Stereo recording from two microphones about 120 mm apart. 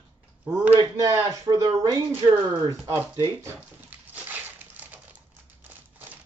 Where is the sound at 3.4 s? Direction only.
15° right (ahead or behind).